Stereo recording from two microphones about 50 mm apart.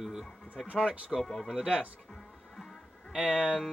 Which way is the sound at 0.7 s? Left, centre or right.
Centre.